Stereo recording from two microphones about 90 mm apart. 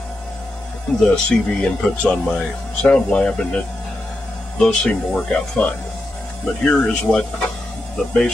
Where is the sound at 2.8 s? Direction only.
10° left (ahead or behind).